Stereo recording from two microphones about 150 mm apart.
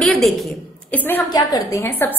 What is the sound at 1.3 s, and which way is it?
Speech, 25° left (ahead or behind).